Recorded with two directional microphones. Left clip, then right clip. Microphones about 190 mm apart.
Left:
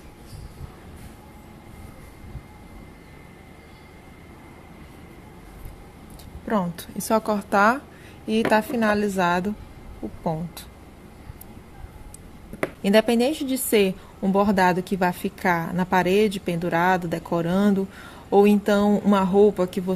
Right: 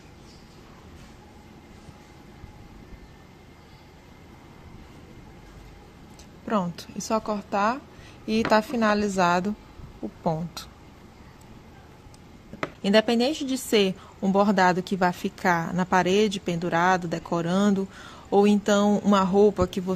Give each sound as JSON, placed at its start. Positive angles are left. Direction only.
{"t": 6.4, "sound": "a woman's voice", "side_deg": -5}
{"t": 8.3, "sound": "a woman's voice", "side_deg": -10}
{"t": 12.8, "sound": "a woman's voice", "side_deg": -5}